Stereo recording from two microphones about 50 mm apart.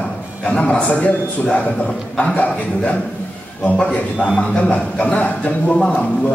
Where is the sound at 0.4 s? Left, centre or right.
Left.